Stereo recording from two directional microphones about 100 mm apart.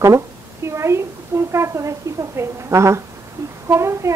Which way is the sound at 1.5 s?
30° right (ahead or behind).